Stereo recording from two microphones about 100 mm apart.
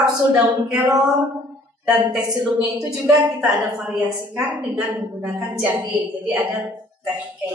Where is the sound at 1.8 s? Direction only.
10° right (ahead or behind).